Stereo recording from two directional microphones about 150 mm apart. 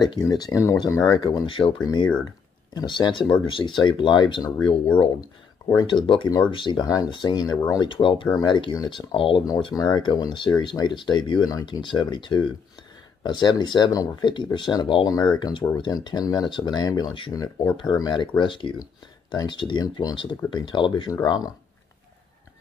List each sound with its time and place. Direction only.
0.0 s speech: 30° left (ahead or behind)